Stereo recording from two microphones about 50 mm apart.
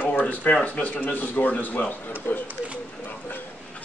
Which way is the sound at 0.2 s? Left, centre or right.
Left.